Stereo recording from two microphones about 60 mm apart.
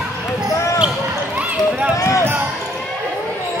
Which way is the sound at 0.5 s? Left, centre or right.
Left.